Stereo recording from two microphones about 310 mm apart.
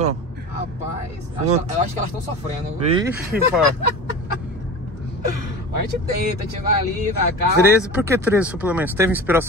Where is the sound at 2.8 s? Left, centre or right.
Centre.